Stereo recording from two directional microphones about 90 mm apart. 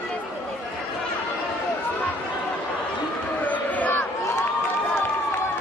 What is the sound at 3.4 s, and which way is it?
Crowd, 20° left (ahead or behind).